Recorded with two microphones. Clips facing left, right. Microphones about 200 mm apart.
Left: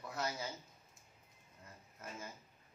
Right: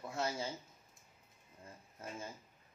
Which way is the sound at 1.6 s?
30° right (ahead or behind).